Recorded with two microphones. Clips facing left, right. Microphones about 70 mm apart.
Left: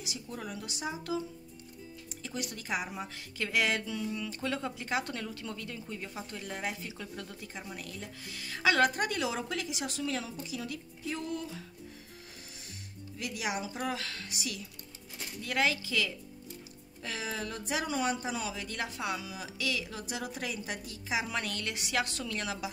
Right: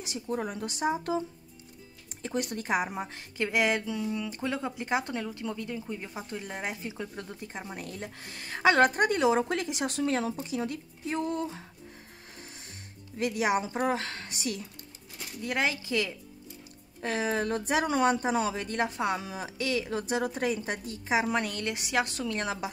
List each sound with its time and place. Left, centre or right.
0.0 s speech: right
2.2 s speech: right
3.4 s speech: right
13.2 s speech: right
15.4 s speech: right
17.0 s speech: right
21.4 s speech: right